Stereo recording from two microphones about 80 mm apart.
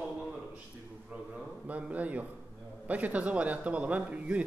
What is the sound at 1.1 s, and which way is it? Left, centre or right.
A man's voice, centre.